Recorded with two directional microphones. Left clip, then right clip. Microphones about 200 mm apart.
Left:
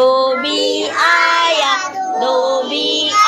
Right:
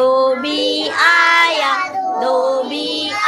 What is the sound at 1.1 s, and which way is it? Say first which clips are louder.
Child singing: even; centre (ahead or behind).